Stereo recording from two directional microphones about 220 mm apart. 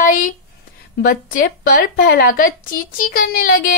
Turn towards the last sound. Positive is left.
turn(degrees=45)  # may be behind; listen again after turning